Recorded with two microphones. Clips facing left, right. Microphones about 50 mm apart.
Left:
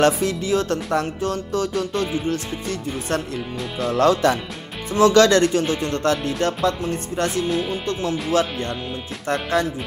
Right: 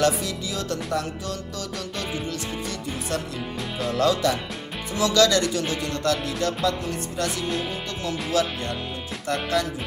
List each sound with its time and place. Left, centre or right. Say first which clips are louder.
0.0 s speech: left 5 dB; left
3.9 s speech: left 5 dB; left